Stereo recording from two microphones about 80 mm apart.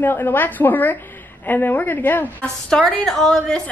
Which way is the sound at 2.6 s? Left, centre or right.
Centre.